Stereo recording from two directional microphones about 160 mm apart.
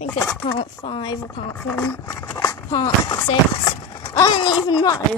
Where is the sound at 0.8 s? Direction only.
30° left (ahead or behind).